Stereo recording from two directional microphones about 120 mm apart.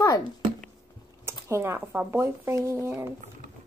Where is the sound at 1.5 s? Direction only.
20° right (ahead or behind).